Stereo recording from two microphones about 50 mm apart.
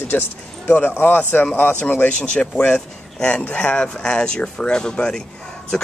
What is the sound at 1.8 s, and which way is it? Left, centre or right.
Speech, left.